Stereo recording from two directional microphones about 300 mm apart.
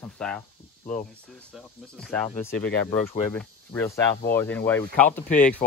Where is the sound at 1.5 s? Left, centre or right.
Centre.